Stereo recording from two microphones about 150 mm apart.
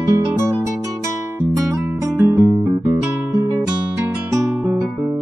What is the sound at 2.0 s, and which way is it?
Music, 15° right (ahead or behind).